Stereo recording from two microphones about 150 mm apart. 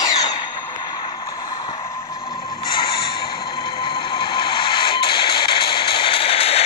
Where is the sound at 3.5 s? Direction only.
30° left (ahead or behind).